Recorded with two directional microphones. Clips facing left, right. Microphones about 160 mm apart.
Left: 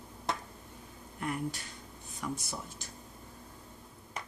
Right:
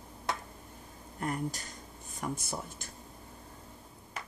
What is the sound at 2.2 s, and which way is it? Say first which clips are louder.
Speech: right 2 dB; 50° right (ahead or behind).